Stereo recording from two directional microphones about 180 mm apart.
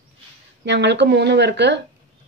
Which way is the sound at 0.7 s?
70° right (ahead or behind).